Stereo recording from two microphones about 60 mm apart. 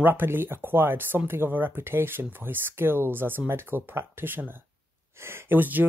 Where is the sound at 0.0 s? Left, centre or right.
Right.